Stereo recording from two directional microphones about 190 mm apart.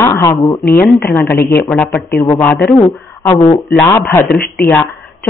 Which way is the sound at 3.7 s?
10° left (ahead or behind).